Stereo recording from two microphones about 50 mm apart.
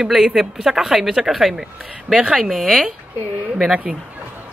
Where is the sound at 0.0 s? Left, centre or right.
Centre.